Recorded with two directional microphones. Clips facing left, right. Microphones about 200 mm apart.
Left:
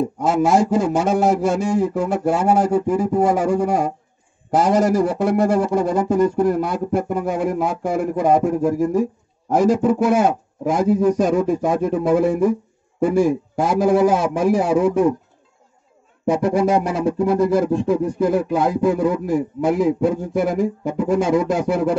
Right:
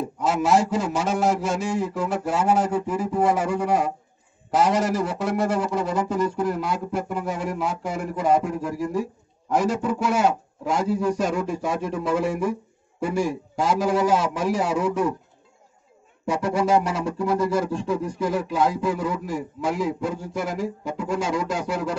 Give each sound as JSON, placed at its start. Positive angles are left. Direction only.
{"t": 0.2, "sound": "speech", "side_deg": 50}
{"t": 16.3, "sound": "speech", "side_deg": 50}